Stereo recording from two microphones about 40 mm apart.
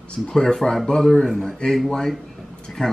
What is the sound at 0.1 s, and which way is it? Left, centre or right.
Speech, centre.